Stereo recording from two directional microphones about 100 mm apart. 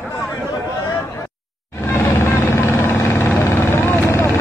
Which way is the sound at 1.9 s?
25° left (ahead or behind).